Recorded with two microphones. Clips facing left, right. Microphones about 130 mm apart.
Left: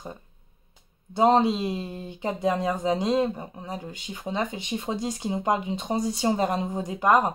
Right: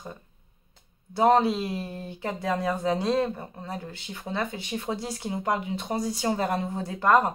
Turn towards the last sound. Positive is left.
turn(degrees=15)  # may be behind; listen again after turning